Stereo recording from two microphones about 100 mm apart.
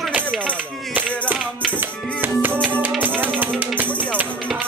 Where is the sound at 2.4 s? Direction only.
15° right (ahead or behind).